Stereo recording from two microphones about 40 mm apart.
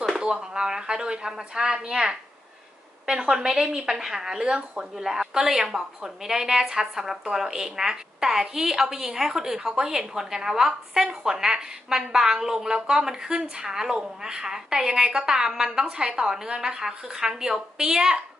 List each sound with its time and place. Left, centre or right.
0.2 s a woman's voice: right